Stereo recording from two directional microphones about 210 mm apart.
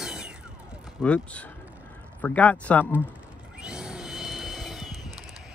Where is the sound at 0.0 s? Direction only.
Centre (ahead or behind).